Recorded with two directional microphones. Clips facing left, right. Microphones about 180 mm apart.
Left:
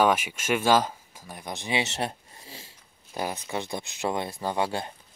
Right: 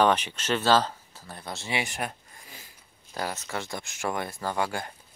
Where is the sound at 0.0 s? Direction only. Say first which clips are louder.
Even; 10° left (ahead or behind); by 2.7 s 30° left (ahead or behind).